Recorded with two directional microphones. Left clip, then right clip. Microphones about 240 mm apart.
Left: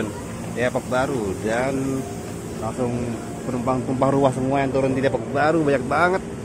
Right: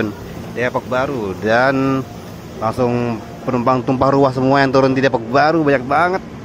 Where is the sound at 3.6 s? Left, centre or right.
Right.